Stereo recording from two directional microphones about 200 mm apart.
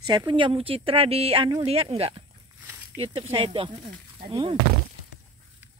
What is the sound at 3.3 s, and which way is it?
Speech, 25° right (ahead or behind).